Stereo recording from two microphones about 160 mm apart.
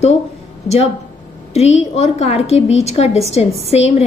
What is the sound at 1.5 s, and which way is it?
A woman's voice, 40° left (ahead or behind).